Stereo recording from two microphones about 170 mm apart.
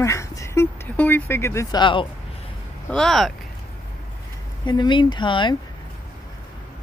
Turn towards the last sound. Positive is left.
turn(degrees=30)  # may be behind; listen again after turning